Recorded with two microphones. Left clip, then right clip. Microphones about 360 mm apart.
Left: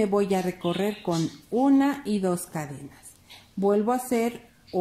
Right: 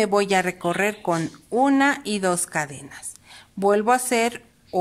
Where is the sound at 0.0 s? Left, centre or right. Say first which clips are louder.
Right 5 dB; right.